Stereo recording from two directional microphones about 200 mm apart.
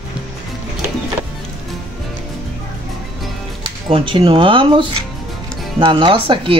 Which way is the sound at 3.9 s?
25° right (ahead or behind).